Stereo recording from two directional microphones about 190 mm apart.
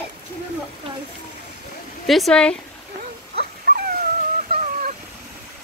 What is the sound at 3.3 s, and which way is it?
Dog, 50° right (ahead or behind).